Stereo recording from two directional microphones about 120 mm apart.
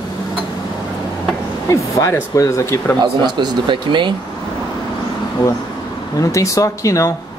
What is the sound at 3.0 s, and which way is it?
A man's voice, 35° right (ahead or behind).